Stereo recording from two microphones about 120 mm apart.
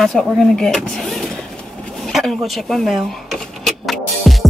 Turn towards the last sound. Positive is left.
turn(degrees=0)  # may be behind; listen again after turning